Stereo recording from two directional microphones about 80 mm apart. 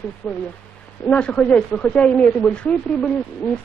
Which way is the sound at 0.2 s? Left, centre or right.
Centre.